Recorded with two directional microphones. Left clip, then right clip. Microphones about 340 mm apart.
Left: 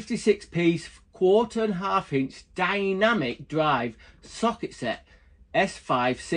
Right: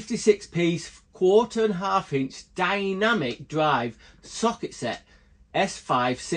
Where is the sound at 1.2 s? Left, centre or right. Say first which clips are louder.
Right 2 dB; centre.